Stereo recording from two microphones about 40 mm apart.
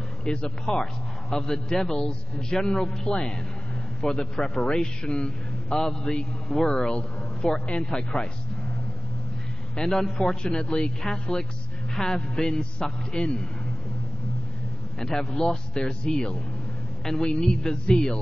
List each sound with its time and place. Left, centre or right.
0.2 s a man's voice: left
5.8 s a man's voice: centre
9.8 s a man's voice: centre
10.4 s a man's voice: left
15.0 s a man's voice: centre
17.0 s a man's voice: centre